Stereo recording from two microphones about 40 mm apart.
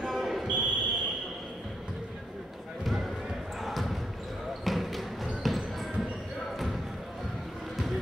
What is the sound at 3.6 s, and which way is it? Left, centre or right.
Basketball bounce, centre.